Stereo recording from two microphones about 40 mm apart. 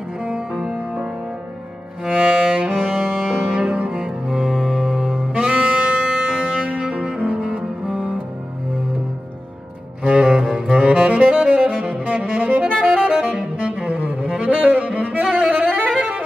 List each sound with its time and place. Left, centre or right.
2.0 s music: right
4.5 s music: centre
4.7 s music: right
7.6 s music: right
10.0 s saxophone: right
12.8 s music: right
13.4 s saxophone: right